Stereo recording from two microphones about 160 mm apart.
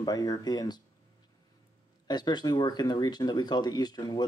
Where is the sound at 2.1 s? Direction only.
25° left (ahead or behind).